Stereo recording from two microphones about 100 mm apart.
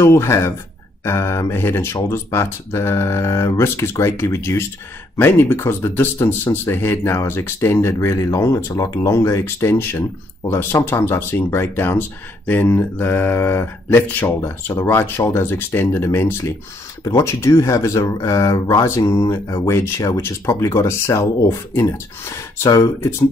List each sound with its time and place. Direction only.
0.0 s speech: 25° left (ahead or behind)